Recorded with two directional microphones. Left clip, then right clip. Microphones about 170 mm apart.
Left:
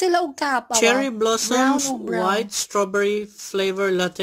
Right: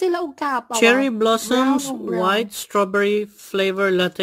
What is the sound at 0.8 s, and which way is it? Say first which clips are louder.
Speech: right 4 dB; 50° right (ahead or behind).